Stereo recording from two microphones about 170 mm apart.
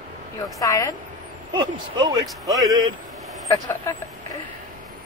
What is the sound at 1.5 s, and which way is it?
Speech, 25° right (ahead or behind).